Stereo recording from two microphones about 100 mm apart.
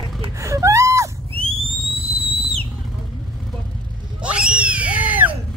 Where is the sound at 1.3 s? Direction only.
70° right (ahead or behind); by 2.6 s 85° right.